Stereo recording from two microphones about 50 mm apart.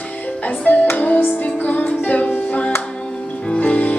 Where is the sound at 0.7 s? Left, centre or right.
Left.